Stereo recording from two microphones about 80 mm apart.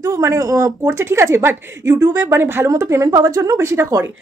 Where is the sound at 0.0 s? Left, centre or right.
Right.